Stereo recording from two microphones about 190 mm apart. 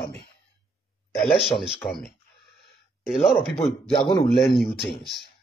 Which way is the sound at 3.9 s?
25° left (ahead or behind).